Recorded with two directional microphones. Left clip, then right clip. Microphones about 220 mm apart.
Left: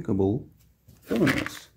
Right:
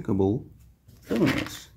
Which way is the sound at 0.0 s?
5° left (ahead or behind).